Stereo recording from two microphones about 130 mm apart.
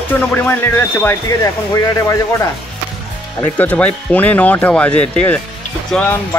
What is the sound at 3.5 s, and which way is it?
Speech, 10° left (ahead or behind).